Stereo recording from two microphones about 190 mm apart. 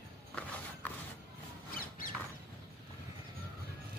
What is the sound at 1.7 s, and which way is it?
Rodents, 50° left (ahead or behind).